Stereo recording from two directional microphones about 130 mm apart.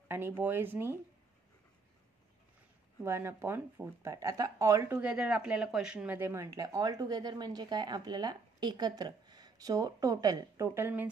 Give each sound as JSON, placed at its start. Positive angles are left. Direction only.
{"t": 0.1, "sound": "speech", "side_deg": -15}
{"t": 3.0, "sound": "speech", "side_deg": -20}